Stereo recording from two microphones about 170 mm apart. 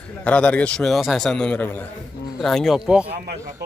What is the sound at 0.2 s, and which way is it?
Speech, 5° left (ahead or behind).